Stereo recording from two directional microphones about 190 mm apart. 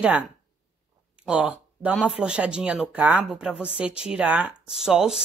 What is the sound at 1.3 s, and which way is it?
Speech, 5° right (ahead or behind).